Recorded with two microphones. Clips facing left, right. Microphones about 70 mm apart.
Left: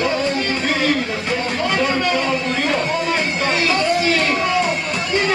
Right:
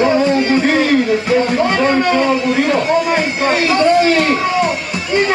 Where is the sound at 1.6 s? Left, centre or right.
Right.